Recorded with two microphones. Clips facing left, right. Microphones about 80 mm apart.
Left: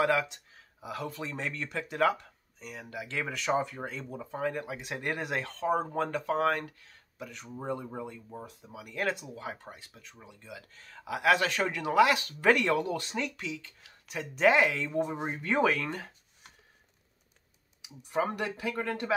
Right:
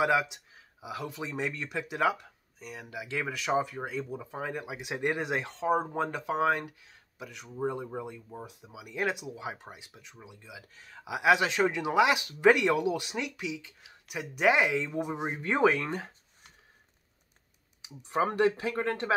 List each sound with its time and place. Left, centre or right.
0.0 s speech: centre
17.8 s speech: right